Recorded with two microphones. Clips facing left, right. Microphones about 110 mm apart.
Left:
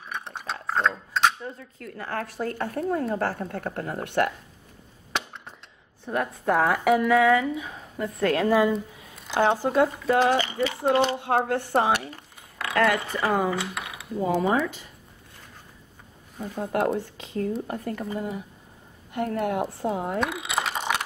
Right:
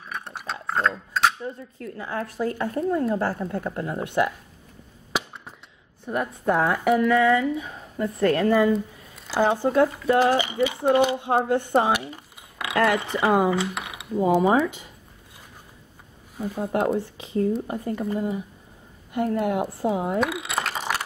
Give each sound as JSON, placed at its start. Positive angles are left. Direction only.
{"t": 0.1, "sound": "cutlery", "side_deg": -5}
{"t": 1.8, "sound": "speech", "side_deg": -5}
{"t": 5.1, "sound": "a sound", "side_deg": -5}
{"t": 6.0, "sound": "speech", "side_deg": -5}
{"t": 11.1, "sound": "speech", "side_deg": -5}
{"t": 11.9, "sound": "speech", "side_deg": -10}
{"t": 16.3, "sound": "speech", "side_deg": -5}
{"t": 19.1, "sound": "speech", "side_deg": -5}